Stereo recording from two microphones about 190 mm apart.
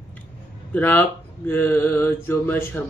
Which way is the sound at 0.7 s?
10° left (ahead or behind).